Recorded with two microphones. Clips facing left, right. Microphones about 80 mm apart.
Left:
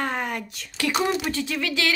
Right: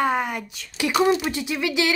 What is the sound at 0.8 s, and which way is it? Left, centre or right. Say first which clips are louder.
A woman's voice: right 4 dB; centre.